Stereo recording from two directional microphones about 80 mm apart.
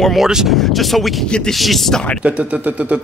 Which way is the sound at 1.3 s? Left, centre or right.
Centre.